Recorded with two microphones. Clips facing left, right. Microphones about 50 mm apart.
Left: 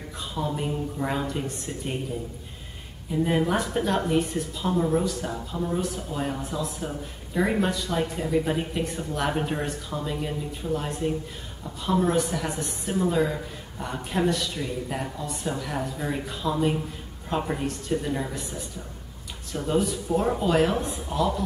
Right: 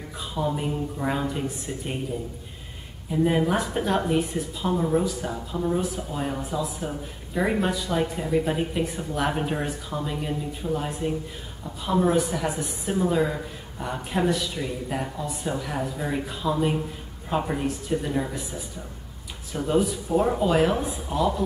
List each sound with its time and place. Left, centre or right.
0.2 s speech: centre
3.1 s speech: centre